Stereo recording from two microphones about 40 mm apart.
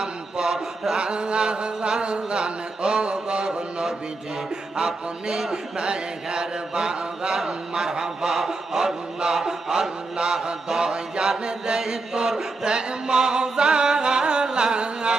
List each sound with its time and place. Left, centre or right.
0.0 s chant: centre
4.7 s chant: centre
10.7 s mantra: centre